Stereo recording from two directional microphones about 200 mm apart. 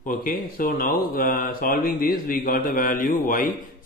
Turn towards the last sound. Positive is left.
turn(degrees=45)  # may be behind; listen again after turning